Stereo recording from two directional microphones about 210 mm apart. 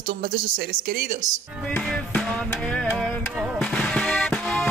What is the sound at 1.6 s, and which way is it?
Music, 5° left (ahead or behind).